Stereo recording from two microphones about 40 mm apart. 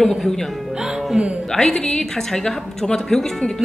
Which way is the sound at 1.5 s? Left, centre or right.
Centre.